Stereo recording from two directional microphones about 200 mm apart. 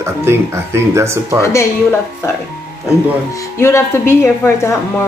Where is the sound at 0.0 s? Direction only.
15° right (ahead or behind).